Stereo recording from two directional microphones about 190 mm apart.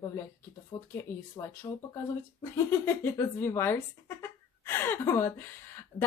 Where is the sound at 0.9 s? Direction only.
15° left (ahead or behind).